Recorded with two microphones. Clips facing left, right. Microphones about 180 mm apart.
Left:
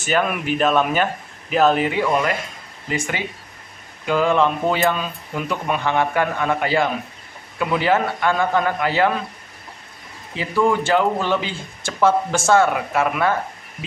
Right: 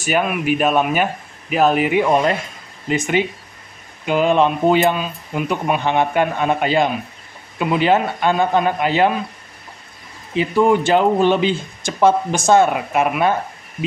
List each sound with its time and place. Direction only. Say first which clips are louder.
0.0 s speech: right 2 dB; 15° right (ahead or behind)
10.3 s speech: right 4 dB; 20° right (ahead or behind)